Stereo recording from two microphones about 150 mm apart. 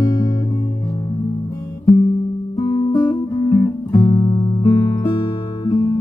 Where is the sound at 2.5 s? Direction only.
30° left (ahead or behind).